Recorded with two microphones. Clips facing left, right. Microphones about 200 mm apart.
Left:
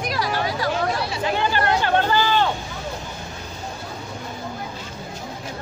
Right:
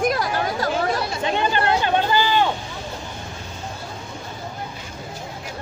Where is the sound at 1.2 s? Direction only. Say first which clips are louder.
Even; 20° right (ahead or behind).